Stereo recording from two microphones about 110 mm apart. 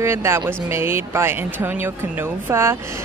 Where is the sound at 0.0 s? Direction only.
25° right (ahead or behind).